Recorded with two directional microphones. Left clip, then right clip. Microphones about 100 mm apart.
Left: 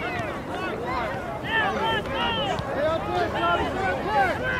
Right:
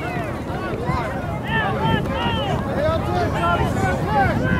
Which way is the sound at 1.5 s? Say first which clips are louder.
Right 2 dB; 20° right (ahead or behind).